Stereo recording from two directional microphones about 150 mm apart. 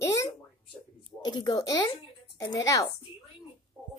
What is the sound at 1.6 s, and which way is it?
Speech, 25° left (ahead or behind).